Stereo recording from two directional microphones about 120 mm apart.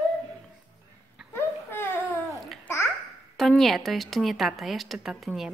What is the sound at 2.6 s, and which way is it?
Babbling, 20° left (ahead or behind).